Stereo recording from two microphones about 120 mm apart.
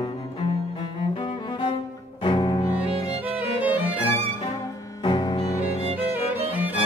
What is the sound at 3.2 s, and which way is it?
Violin, 15° right (ahead or behind).